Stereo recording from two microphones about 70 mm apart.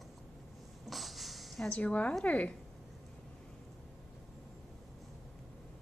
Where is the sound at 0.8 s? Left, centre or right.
Centre.